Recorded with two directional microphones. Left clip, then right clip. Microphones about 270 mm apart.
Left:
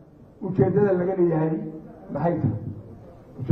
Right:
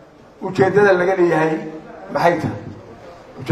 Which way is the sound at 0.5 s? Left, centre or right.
Centre.